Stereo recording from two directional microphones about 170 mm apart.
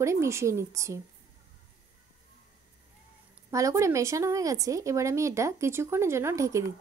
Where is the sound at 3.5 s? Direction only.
20° right (ahead or behind).